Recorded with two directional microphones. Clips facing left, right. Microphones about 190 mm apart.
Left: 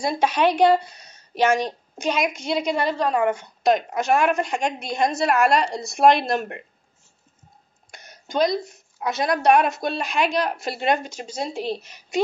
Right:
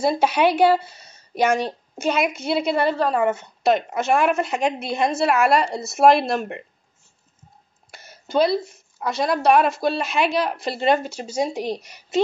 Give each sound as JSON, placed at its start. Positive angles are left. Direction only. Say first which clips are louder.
{"t": 0.0, "sound": "a woman's voice", "louder": "right 2 dB", "side_deg": -10}
{"t": 1.0, "sound": "a sound", "louder": "even", "side_deg": -10}
{"t": 1.6, "sound": "a woman's voice", "louder": "right 1 dB", "side_deg": -5}
{"t": 7.9, "sound": "a woman's voice", "louder": "right 4 dB", "side_deg": -5}